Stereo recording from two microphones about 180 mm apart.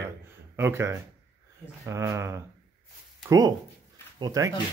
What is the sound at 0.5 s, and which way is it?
Speech, 15° right (ahead or behind).